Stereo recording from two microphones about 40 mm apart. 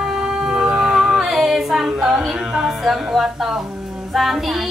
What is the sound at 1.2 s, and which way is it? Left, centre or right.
Female singing, centre.